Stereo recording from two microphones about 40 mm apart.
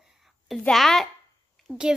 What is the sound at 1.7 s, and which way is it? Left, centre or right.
Speech, left.